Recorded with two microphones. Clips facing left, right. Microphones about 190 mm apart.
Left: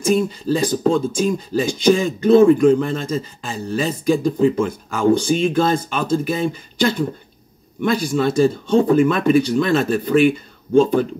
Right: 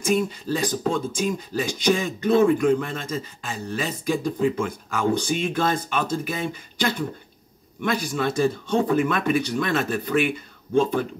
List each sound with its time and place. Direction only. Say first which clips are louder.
0.0 s speech: left 5 dB; 30° left (ahead or behind)